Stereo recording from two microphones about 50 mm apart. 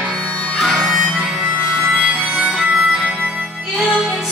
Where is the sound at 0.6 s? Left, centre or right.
Centre.